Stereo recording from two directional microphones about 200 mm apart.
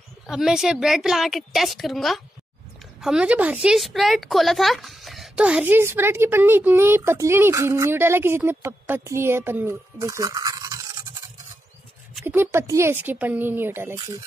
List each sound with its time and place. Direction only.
0.3 s a woman's voice: 5° right (ahead or behind)
12.2 s a woman's voice: 10° right (ahead or behind)
13.9 s speech: 20° right (ahead or behind)